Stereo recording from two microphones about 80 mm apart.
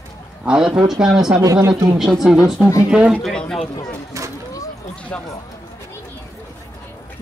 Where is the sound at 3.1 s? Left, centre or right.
Centre.